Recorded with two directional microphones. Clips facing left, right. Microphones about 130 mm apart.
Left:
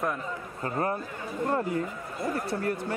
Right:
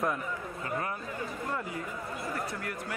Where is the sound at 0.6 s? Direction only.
40° left (ahead or behind).